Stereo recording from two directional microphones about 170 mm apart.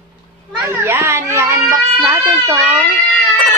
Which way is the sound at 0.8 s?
15° right (ahead or behind).